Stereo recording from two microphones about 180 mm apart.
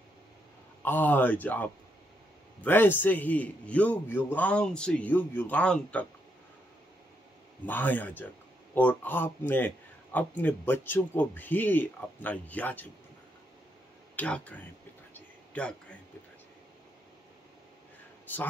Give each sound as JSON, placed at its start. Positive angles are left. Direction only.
{"t": 0.8, "sound": "speech", "side_deg": 10}
{"t": 7.6, "sound": "speech", "side_deg": 10}
{"t": 14.1, "sound": "speech", "side_deg": 10}
{"t": 18.3, "sound": "speech", "side_deg": 10}